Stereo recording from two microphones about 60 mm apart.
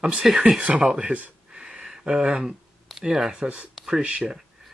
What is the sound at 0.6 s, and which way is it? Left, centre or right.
Speech, right.